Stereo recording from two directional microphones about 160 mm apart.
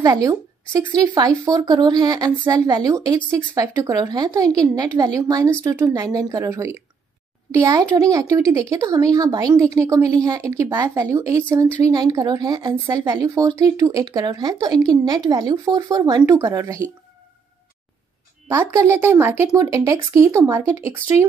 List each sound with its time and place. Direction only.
0.0 s speech: 20° right (ahead or behind)
18.5 s speech: 20° right (ahead or behind)